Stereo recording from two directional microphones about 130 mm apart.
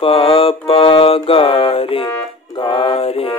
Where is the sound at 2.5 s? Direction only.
40° left (ahead or behind).